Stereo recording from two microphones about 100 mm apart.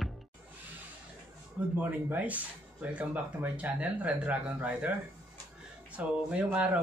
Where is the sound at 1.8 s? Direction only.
20° right (ahead or behind).